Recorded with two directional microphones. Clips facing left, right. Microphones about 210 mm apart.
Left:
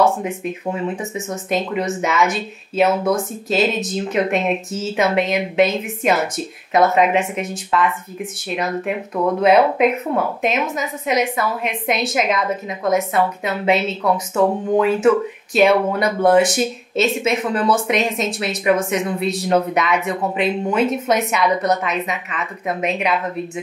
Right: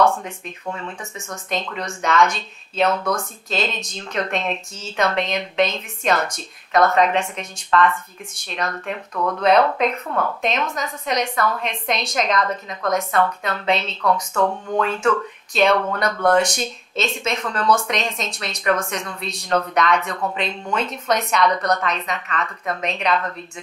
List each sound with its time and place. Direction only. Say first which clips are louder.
0.2 s speech: left 9 dB; 5° left (ahead or behind)
1.1 s speech: left 6 dB; 5° left (ahead or behind)
9.1 s speech: left 4 dB; 25° left (ahead or behind)
9.4 s speech: left 3 dB; 5° left (ahead or behind)